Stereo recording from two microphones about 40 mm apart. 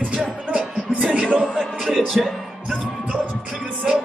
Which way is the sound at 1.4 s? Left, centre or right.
Centre.